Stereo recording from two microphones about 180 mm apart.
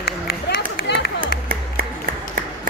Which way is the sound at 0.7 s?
60° left (ahead or behind).